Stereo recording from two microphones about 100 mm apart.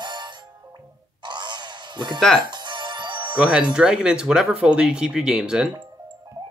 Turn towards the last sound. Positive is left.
turn(degrees=-5)  # may be behind; listen again after turning